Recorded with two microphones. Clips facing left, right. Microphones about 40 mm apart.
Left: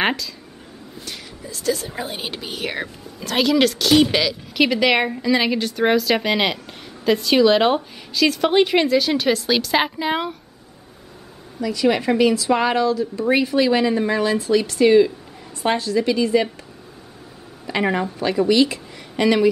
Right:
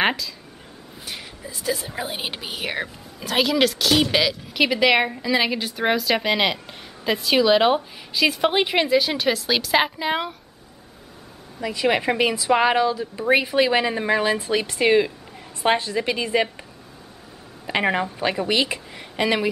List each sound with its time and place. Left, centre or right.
0.0 s speech: centre
0.9 s a woman's voice: centre
8.1 s a woman's voice: centre
11.6 s speech: right
17.6 s speech: right